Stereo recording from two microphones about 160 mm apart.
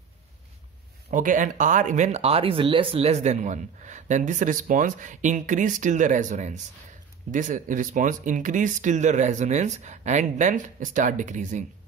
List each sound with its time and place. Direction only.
1.1 s speech: 55° right (ahead or behind)